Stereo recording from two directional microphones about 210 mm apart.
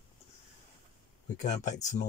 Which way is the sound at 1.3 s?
35° left (ahead or behind).